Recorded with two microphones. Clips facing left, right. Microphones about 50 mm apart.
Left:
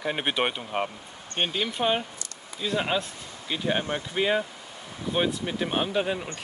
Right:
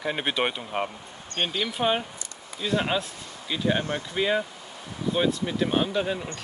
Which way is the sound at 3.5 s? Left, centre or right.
Centre.